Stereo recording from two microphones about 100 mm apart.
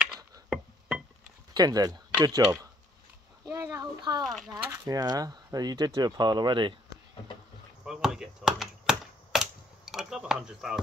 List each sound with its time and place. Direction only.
0.0 s music: 10° right (ahead or behind)
1.5 s speech: 40° right (ahead or behind)
4.2 s speech: centre (ahead or behind)
4.5 s speech: 35° right (ahead or behind)
7.8 s a sound: 5° right (ahead or behind)